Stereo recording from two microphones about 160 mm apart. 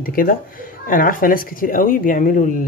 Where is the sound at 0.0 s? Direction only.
65° left (ahead or behind).